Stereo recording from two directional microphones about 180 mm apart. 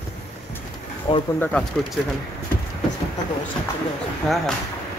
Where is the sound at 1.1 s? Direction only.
30° left (ahead or behind).